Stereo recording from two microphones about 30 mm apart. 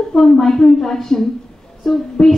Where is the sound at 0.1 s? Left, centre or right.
Centre.